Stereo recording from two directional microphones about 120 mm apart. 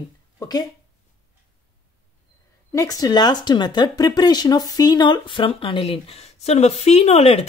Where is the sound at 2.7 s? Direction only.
30° left (ahead or behind); by 7.5 s 60° left (ahead or behind).